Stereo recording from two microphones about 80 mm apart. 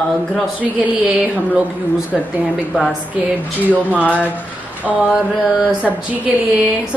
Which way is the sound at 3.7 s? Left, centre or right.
Centre.